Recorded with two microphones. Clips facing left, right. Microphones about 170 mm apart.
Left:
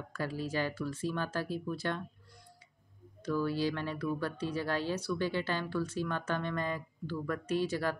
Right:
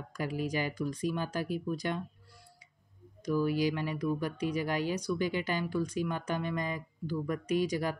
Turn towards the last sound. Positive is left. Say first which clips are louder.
# right 2 dB
turn(degrees=-15)  # may be behind; listen again after turning